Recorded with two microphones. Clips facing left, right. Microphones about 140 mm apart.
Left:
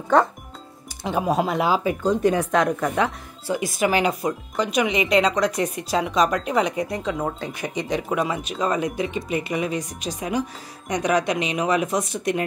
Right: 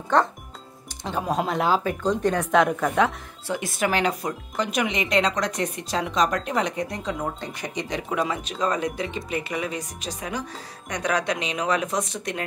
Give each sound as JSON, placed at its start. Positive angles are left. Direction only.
{"t": 0.1, "sound": "speech", "side_deg": 5}